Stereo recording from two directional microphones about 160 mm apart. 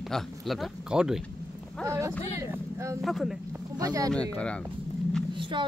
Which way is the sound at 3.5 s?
20° right (ahead or behind).